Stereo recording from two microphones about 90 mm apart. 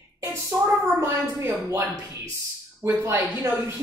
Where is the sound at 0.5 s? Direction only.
20° right (ahead or behind).